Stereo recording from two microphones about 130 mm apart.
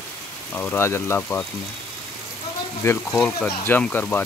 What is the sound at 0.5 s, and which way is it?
Speech, 15° left (ahead or behind).